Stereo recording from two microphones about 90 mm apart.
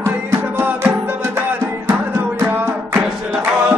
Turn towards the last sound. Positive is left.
turn(degrees=-20)  # may be behind; listen again after turning